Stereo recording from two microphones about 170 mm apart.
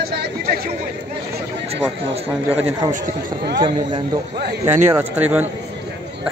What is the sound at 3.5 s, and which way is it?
Speech, 30° right (ahead or behind).